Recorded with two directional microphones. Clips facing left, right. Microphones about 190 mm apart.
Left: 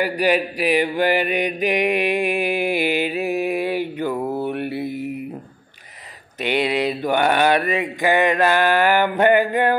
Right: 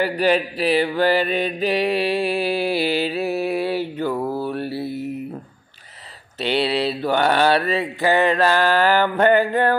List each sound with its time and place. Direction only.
0.0 s mantra: 10° left (ahead or behind)
6.4 s mantra: 15° left (ahead or behind)